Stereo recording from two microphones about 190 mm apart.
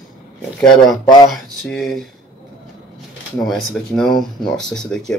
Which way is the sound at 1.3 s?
Centre (ahead or behind).